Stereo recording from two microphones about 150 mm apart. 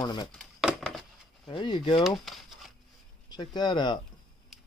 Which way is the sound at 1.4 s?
30° left (ahead or behind).